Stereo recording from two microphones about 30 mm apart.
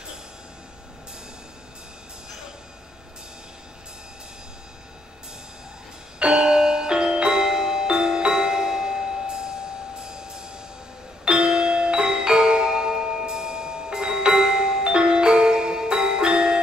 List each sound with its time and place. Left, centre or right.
6.1 s music: right